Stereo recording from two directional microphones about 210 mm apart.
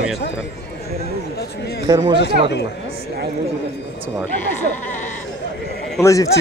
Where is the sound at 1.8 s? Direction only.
20° right (ahead or behind).